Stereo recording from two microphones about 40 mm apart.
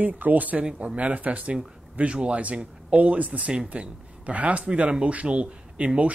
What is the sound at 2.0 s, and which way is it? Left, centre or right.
Speech, right.